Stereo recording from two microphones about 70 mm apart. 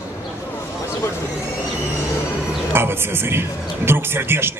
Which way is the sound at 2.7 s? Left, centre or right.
Right.